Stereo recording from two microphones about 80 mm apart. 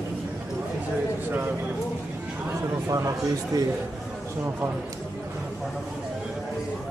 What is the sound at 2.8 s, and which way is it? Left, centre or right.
Speech, right.